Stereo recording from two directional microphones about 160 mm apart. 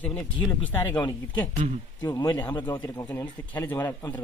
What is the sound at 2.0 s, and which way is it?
Speech, 20° left (ahead or behind).